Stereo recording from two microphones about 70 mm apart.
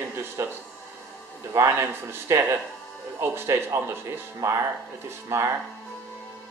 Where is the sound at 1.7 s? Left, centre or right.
Right.